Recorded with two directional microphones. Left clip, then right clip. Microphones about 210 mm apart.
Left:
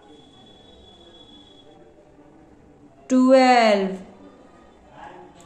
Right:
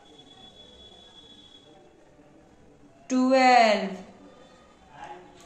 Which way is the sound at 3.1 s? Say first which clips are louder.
Left 4 dB; 25° left (ahead or behind).